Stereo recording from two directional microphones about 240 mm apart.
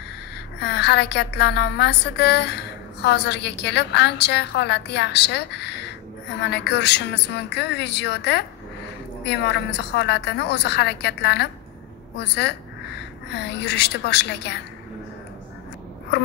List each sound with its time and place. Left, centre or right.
0.6 s a woman's voice: left